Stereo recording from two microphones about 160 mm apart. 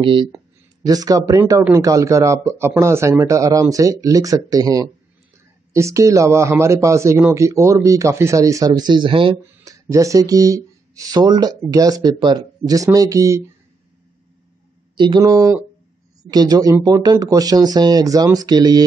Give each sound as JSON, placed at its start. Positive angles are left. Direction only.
{"t": 0.0, "sound": "speech", "side_deg": -30}
{"t": 9.4, "sound": "speech", "side_deg": -20}
{"t": 15.0, "sound": "speech", "side_deg": -25}